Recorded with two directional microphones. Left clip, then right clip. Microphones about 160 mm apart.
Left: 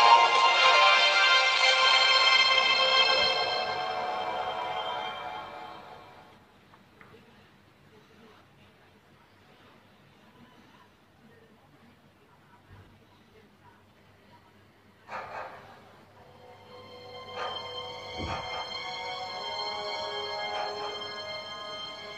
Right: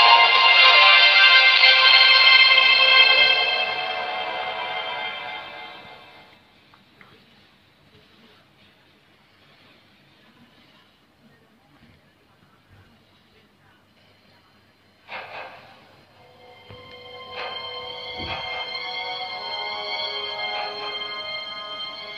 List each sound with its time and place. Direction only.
0.0 s music: 10° left (ahead or behind)
15.0 s a sound: 5° left (ahead or behind)
17.3 s music: 5° left (ahead or behind)
17.6 s music: 20° right (ahead or behind)
18.0 s music: 5° left (ahead or behind)
19.3 s music: 25° right (ahead or behind)
20.1 s music: 5° left (ahead or behind)
21.1 s music: 20° right (ahead or behind)
21.8 s music: 5° left (ahead or behind)